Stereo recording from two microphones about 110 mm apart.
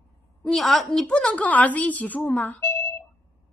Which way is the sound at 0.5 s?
Centre (ahead or behind).